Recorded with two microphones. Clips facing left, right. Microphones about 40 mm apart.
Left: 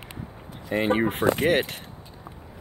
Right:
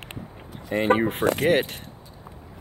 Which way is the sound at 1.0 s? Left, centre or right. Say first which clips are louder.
Even; centre.